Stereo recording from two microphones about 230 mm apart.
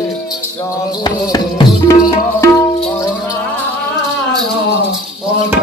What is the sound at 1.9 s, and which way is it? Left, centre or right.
Tabla, centre.